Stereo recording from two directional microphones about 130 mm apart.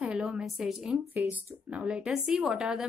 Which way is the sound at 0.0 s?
5° right (ahead or behind).